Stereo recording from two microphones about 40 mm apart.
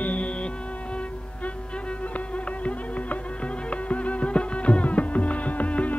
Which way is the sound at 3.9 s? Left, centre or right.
Left.